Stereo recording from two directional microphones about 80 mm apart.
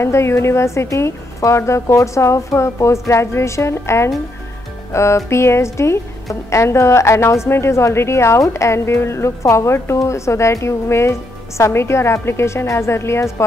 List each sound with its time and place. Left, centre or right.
0.0 s a woman's voice: left